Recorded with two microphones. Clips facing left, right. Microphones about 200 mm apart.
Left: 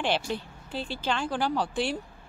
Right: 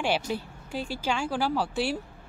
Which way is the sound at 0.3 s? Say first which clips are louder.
Right 1 dB; 10° right (ahead or behind).